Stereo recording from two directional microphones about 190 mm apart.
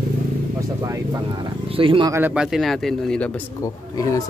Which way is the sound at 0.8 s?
15° right (ahead or behind).